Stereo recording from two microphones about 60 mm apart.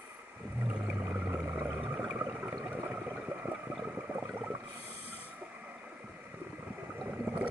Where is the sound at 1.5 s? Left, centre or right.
Right.